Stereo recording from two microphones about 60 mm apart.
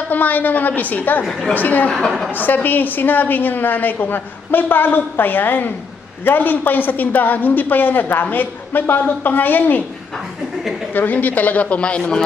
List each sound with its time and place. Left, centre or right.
0.1 s a woman's voice: left
2.0 s a woman's voice: centre
2.3 s a man's voice: left
10.9 s a woman's voice: left